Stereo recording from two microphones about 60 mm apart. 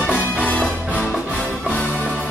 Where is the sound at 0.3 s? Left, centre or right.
Left.